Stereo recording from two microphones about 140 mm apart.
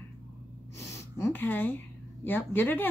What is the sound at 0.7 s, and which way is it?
Speech, 20° left (ahead or behind).